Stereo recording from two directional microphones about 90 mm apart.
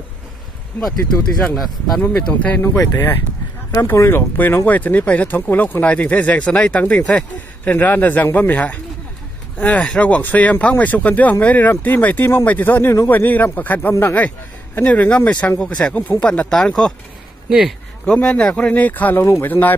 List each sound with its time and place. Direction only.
0.7 s speech: 5° left (ahead or behind)
2.0 s speech: 15° left (ahead or behind)
2.6 s speech: 35° left (ahead or behind); by 16.9 s 10° left (ahead or behind)
17.5 s speech: 5° right (ahead or behind)
18.0 s speech: 15° left (ahead or behind)